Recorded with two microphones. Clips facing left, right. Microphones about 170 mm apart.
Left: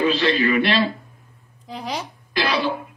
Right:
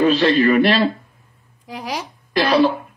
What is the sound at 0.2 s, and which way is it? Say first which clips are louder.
Speech: right 5 dB; 35° right (ahead or behind).